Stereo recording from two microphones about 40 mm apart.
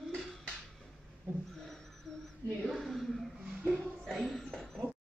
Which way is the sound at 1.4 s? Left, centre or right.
Centre.